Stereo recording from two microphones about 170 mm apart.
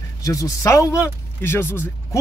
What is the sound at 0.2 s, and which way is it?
A man's voice, 20° left (ahead or behind).